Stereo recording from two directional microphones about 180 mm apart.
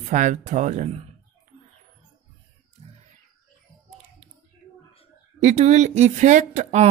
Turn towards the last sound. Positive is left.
turn(degrees=-40)  # may be behind; listen again after turning